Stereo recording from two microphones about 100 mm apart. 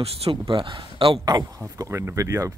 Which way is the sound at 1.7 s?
25° right (ahead or behind).